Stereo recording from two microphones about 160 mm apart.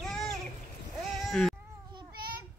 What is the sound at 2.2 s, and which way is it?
Child singing, 70° right (ahead or behind).